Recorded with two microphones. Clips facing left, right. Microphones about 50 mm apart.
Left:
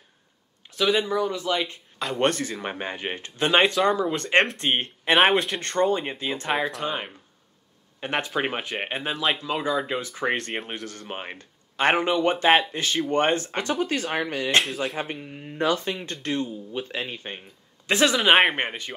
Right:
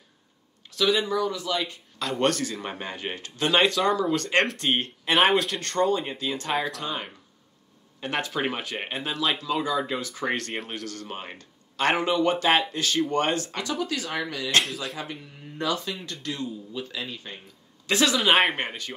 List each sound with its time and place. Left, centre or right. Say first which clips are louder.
0.7 s speech: left 1 dB; left
3.7 s speech: left 1 dB; centre; by 14.2 s left
14.6 s speech: left 1 dB; left
15.0 s speech: left 5 dB; left
17.8 s speech: left 2 dB; left